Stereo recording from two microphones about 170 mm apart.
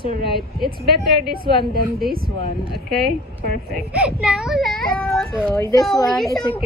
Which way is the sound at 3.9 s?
5° right (ahead or behind).